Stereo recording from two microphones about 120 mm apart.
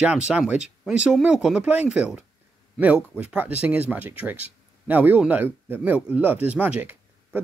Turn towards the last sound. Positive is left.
turn(degrees=-15)  # may be behind; listen again after turning